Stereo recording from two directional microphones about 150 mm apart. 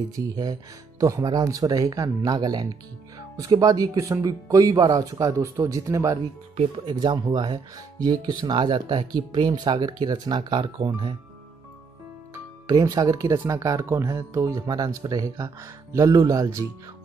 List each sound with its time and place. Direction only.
0.1 s speech: 25° right (ahead or behind)
6.5 s speech: 50° right (ahead or behind)
6.9 s speech: 30° right (ahead or behind)
12.6 s speech: 25° right (ahead or behind)